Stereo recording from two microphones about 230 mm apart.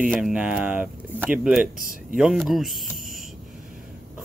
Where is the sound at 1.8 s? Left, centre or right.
Right.